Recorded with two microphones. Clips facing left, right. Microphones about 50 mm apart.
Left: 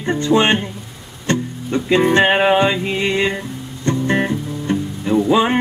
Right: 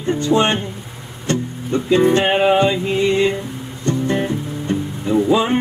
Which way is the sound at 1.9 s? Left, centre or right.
Left.